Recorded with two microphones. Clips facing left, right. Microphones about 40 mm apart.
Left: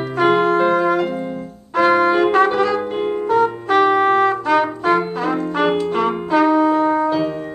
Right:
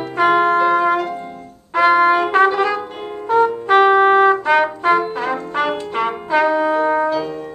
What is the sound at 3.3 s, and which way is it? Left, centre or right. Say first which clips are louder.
Trumpet: right 4 dB; centre.